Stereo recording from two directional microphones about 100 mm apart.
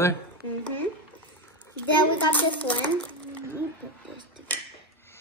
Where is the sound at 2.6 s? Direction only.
15° left (ahead or behind).